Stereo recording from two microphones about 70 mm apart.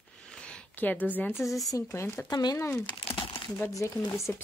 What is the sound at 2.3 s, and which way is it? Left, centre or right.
Speech, left.